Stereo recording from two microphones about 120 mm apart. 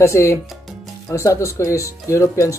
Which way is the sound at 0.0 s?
25° left (ahead or behind).